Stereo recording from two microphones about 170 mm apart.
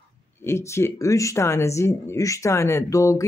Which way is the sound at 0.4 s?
15° left (ahead or behind).